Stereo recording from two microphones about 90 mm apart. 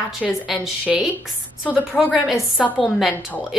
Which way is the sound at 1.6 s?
15° right (ahead or behind).